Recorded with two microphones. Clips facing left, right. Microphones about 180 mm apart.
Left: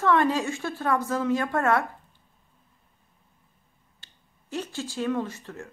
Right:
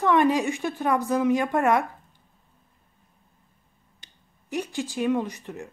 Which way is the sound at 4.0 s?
15° right (ahead or behind).